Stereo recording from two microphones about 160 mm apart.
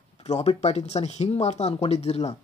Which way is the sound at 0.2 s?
40° left (ahead or behind).